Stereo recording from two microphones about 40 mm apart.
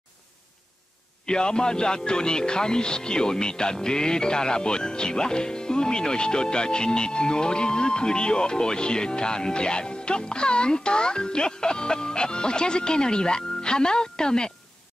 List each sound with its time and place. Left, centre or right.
1.2 s speech: left